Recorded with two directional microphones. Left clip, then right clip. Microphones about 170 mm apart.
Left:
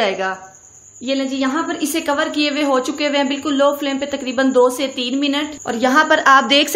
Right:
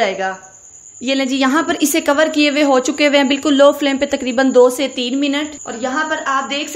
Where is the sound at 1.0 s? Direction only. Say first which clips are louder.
Right 4 dB; 50° right (ahead or behind).